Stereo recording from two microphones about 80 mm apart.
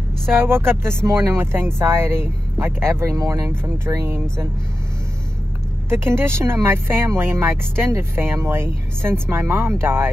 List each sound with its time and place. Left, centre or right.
0.4 s speech: right
5.9 s speech: right